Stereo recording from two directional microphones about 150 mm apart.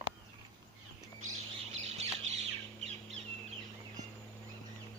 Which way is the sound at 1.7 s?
45° right (ahead or behind).